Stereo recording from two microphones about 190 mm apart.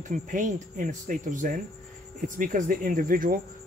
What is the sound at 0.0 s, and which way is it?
Speech, 40° right (ahead or behind).